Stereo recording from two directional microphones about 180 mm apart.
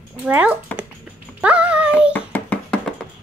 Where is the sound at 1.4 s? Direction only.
5° right (ahead or behind).